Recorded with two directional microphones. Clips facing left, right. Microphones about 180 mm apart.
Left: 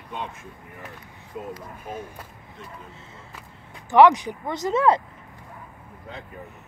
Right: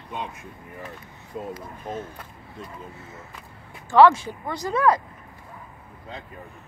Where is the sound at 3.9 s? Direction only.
20° left (ahead or behind).